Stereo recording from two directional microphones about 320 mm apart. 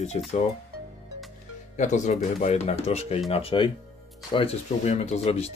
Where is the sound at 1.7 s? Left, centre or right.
Left.